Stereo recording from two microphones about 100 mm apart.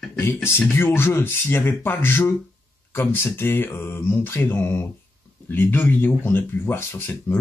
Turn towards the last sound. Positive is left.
turn(degrees=20)  # may be behind; listen again after turning